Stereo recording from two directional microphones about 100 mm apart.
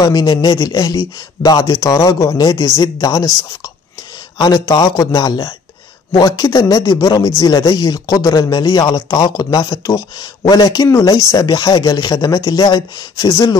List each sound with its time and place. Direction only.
0.0 s speech: 45° left (ahead or behind)
4.4 s speech: 40° left (ahead or behind)